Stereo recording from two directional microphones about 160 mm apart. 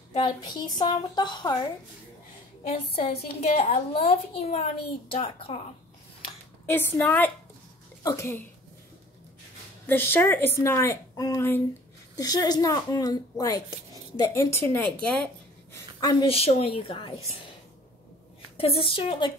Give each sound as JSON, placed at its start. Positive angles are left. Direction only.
{"t": 0.2, "sound": "speech", "side_deg": 25}
{"t": 3.0, "sound": "a woman's voice", "side_deg": 35}
{"t": 6.6, "sound": "speech", "side_deg": 15}
{"t": 9.8, "sound": "speech", "side_deg": 15}
{"t": 15.7, "sound": "a woman's voice", "side_deg": 25}
{"t": 16.3, "sound": "a woman's voice", "side_deg": 40}
{"t": 18.6, "sound": "a woman's voice", "side_deg": 35}